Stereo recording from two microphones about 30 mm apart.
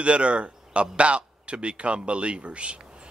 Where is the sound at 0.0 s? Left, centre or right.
Right.